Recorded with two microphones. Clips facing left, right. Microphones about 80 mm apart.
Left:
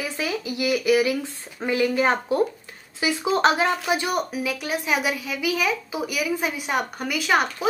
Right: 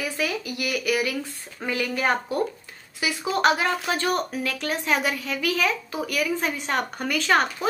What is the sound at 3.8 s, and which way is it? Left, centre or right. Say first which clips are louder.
A woman's voice: left 1 dB; centre.